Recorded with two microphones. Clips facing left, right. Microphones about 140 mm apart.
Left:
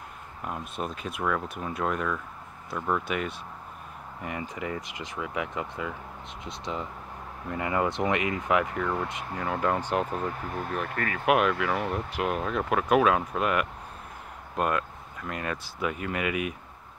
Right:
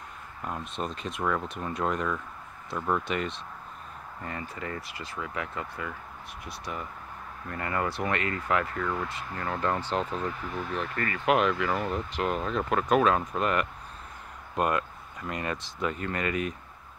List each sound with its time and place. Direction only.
0.5 s speech: 5° left (ahead or behind)